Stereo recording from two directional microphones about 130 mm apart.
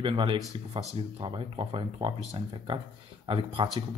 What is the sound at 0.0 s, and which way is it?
Speech, 40° right (ahead or behind).